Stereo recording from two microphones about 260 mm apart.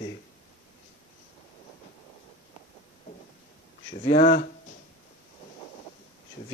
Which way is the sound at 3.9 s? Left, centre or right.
Left.